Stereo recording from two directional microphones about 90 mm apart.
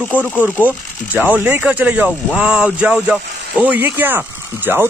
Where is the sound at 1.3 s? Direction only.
20° right (ahead or behind).